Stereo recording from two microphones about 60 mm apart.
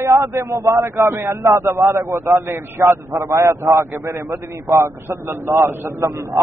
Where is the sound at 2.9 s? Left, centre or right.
Right.